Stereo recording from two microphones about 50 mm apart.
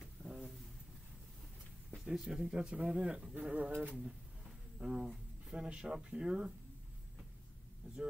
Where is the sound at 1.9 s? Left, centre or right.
Centre.